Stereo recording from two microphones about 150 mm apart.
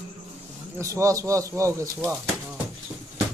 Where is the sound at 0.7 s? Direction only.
20° right (ahead or behind).